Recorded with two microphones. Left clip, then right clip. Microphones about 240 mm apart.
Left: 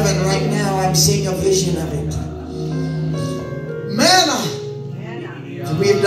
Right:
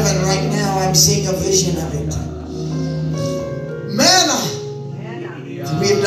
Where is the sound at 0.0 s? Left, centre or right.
Right.